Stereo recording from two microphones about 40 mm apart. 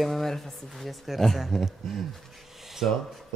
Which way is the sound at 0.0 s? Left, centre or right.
Centre.